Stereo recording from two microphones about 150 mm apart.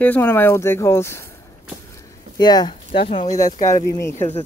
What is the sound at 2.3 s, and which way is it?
Speech, 25° left (ahead or behind).